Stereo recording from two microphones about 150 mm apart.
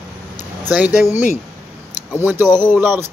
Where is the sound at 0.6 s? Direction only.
10° right (ahead or behind).